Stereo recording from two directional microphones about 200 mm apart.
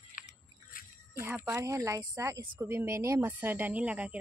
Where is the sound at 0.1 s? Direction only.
40° left (ahead or behind).